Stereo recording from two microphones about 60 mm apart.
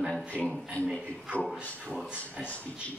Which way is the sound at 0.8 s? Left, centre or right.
Left.